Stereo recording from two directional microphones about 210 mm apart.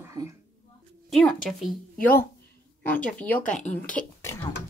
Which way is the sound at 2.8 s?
5° left (ahead or behind).